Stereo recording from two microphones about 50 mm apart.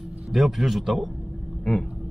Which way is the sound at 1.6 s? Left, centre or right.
Centre.